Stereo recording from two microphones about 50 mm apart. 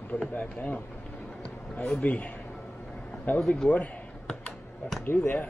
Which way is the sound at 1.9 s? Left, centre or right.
Left.